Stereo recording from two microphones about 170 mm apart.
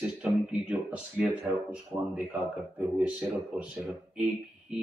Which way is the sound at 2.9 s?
5° right (ahead or behind).